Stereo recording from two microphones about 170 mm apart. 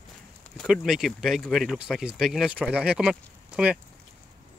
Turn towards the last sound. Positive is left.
turn(degrees=-5)  # may be behind; listen again after turning